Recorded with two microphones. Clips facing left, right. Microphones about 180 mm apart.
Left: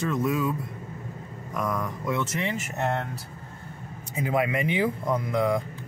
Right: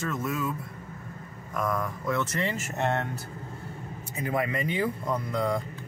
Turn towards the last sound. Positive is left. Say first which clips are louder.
# left 3 dB
turn(degrees=5)  # may be behind; listen again after turning